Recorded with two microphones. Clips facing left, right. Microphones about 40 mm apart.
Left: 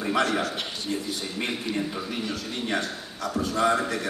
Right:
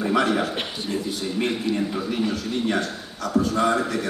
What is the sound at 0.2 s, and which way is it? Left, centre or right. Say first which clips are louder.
Speech: right 1 dB; centre.